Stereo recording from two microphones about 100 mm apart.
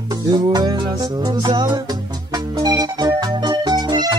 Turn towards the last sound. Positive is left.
turn(degrees=-45)  # may be behind; listen again after turning